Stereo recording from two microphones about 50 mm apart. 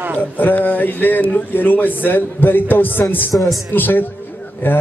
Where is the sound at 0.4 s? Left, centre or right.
Left.